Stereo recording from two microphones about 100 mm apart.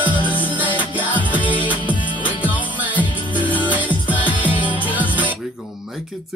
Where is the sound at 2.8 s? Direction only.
15° right (ahead or behind).